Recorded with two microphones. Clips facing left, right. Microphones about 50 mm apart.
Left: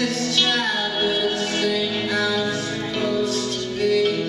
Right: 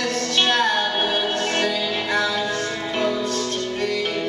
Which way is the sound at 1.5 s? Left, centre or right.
Centre.